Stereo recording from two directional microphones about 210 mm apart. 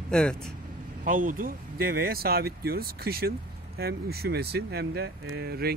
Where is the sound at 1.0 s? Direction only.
40° right (ahead or behind).